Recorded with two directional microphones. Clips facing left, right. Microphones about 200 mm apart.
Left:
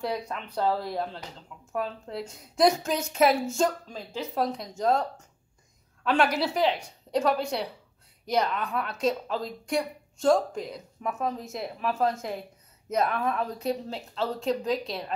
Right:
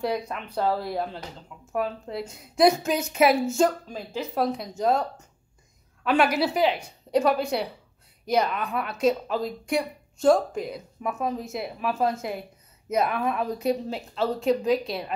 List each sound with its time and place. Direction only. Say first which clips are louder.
0.0 s a woman's voice: right 3 dB; 5° right (ahead or behind)
6.0 s a woman's voice: right 2 dB; 5° right (ahead or behind)